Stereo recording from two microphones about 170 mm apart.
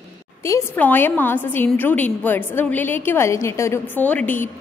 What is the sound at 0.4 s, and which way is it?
A woman's voice, 15° left (ahead or behind).